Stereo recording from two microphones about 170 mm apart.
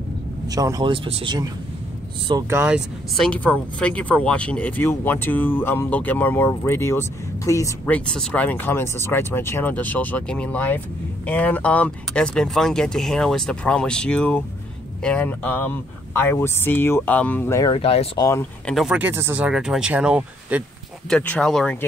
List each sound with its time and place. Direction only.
0.5 s speech: 20° right (ahead or behind)
2.5 s speech: 10° right (ahead or behind)
3.2 s speech: 5° left (ahead or behind)
17.7 s speech: 35° left (ahead or behind)
18.2 s speech: 15° left (ahead or behind)
18.7 s speech: centre (ahead or behind)
21.1 s speech: 5° left (ahead or behind)